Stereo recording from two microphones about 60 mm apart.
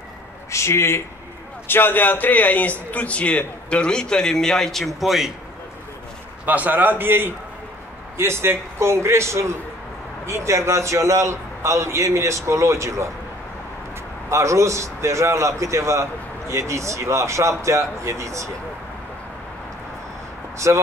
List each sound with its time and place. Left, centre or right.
0.5 s a man's voice: left; by 5.3 s centre
6.4 s a man's voice: right
8.2 s a man's voice: right
14.3 s a man's voice: right
20.5 s speech: right